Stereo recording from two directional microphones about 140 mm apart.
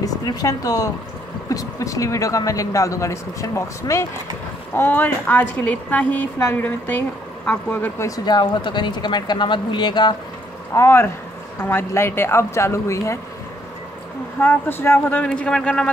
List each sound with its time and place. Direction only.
0.0 s a woman's voice: 25° left (ahead or behind)
8.3 s speech: 30° left (ahead or behind)
10.7 s speech: 20° left (ahead or behind)
14.4 s a woman's voice: 15° left (ahead or behind)